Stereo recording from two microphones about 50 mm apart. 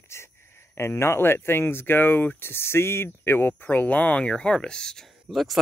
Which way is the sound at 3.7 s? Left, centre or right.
Left.